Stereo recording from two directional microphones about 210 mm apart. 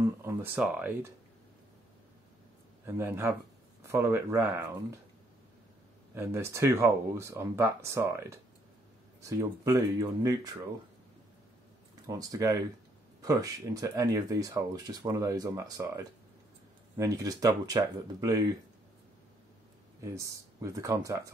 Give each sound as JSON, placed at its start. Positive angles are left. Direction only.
{"t": 0.0, "sound": "a sound", "side_deg": -15}
{"t": 0.6, "sound": "speech", "side_deg": -5}
{"t": 2.8, "sound": "speech", "side_deg": -10}
{"t": 6.1, "sound": "speech", "side_deg": -10}
{"t": 12.1, "sound": "speech", "side_deg": -15}
{"t": 20.0, "sound": "speech", "side_deg": -15}